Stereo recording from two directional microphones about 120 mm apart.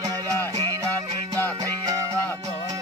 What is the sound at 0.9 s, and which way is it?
Music, 15° left (ahead or behind).